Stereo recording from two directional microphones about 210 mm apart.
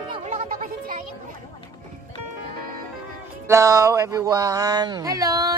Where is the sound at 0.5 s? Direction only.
40° right (ahead or behind).